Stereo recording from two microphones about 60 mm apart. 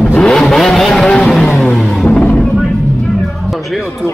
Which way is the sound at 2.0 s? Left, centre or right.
Left.